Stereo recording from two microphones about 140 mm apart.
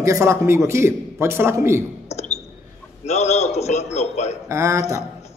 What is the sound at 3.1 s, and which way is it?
A man's voice, 50° left (ahead or behind).